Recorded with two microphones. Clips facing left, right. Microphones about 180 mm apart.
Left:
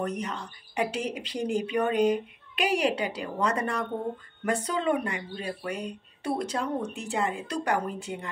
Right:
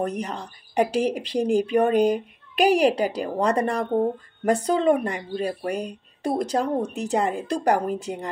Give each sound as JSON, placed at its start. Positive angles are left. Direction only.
{"t": 0.0, "sound": "speech", "side_deg": -35}